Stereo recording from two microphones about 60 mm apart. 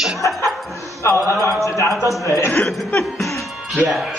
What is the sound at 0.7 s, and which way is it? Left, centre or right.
A man's voice, left.